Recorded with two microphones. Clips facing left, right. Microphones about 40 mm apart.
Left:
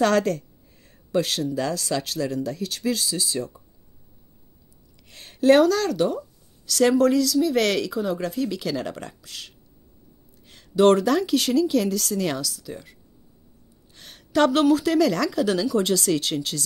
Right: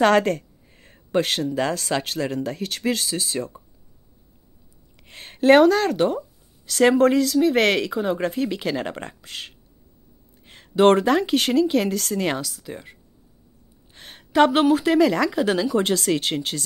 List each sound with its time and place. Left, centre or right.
0.0 s speech: right
4.9 s speech: right
13.9 s a woman's voice: right